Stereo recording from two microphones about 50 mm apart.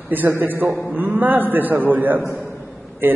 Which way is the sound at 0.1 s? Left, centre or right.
Right.